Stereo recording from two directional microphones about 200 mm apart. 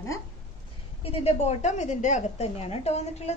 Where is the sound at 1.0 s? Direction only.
30° left (ahead or behind).